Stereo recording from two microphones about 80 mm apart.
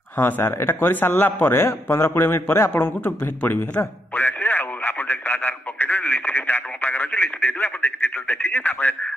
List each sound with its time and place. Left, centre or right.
0.2 s a man's voice: left
2.7 s radio: left